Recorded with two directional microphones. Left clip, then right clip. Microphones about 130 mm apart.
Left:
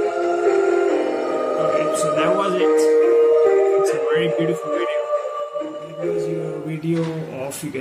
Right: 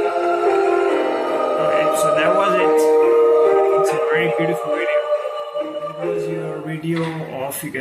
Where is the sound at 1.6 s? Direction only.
25° left (ahead or behind).